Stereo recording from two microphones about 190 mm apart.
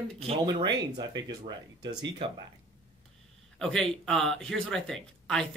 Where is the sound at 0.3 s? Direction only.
25° right (ahead or behind).